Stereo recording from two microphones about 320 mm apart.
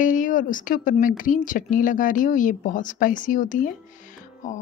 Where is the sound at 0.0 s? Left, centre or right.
Left.